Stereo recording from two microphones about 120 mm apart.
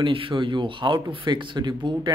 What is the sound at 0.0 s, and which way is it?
Speech, 45° right (ahead or behind).